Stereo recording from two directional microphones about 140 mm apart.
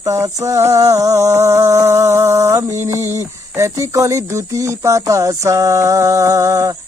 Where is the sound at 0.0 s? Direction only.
20° right (ahead or behind).